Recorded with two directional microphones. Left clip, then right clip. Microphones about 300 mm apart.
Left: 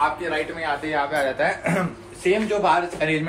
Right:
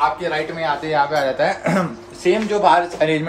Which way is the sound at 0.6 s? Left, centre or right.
Right.